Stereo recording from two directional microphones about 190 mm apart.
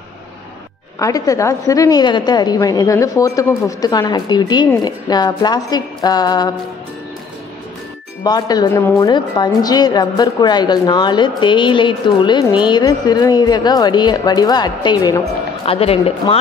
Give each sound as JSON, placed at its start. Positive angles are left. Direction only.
{"t": 0.9, "sound": "a woman's voice", "side_deg": 15}
{"t": 8.2, "sound": "a woman's voice", "side_deg": 20}